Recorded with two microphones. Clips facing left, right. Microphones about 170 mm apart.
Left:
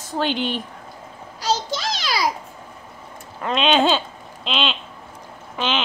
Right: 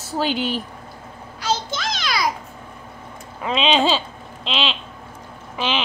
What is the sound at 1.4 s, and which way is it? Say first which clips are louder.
Music: left 1 dB; 35° left (ahead or behind).